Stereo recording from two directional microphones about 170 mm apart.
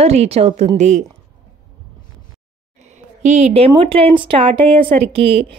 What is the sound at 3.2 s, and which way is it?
A woman's voice, 40° right (ahead or behind).